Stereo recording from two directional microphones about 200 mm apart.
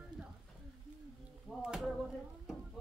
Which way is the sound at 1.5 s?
Centre (ahead or behind).